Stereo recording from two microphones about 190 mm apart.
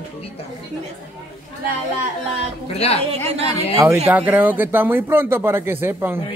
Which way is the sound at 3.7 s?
15° right (ahead or behind).